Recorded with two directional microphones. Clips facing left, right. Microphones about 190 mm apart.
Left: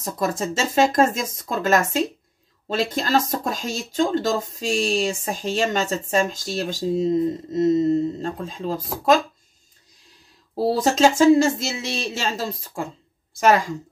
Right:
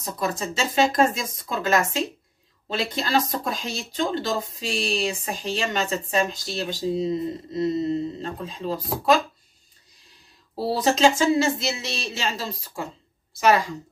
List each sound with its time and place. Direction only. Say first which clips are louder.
0.0 s speech: left 3 dB; 50° left (ahead or behind)
10.5 s speech: left 3 dB; 45° left (ahead or behind)